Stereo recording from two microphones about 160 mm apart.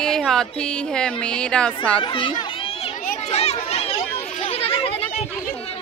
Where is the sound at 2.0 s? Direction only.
30° left (ahead or behind).